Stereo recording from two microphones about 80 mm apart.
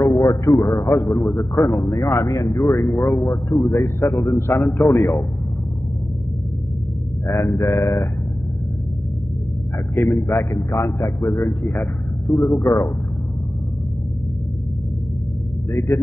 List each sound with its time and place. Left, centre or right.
0.0 s a man's voice: left
7.2 s a man's voice: left
9.9 s a man's voice: left
15.9 s a man's voice: left